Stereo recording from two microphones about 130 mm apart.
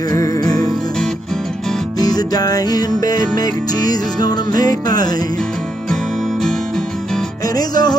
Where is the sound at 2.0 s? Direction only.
30° left (ahead or behind).